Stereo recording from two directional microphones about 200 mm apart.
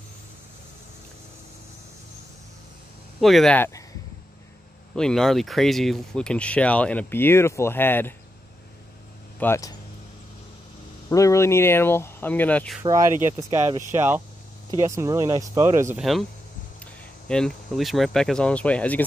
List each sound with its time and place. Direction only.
3.2 s speech: centre (ahead or behind)
4.9 s speech: 5° left (ahead or behind)
9.4 s speech: 15° left (ahead or behind)
11.1 s speech: 15° left (ahead or behind)
13.4 s speech: 15° right (ahead or behind)
16.0 s speech: centre (ahead or behind)